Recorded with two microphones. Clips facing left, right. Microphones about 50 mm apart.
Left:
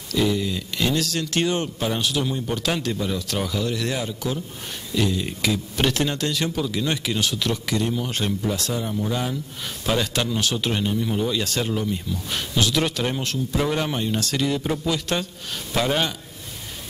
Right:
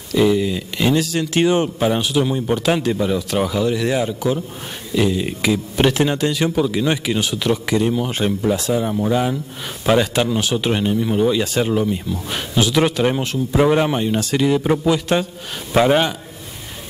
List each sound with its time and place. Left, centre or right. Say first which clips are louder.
0.1 s speech: right 6 dB; centre
8.8 s a man's voice: right 7 dB; right